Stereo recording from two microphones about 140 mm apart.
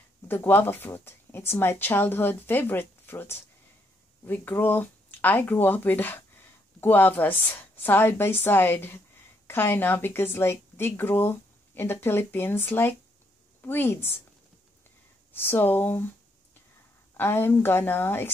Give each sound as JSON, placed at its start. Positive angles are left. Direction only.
{"t": 0.3, "sound": "a woman's voice", "side_deg": 15}
{"t": 15.3, "sound": "a woman's voice", "side_deg": 15}
{"t": 17.2, "sound": "a woman's voice", "side_deg": 15}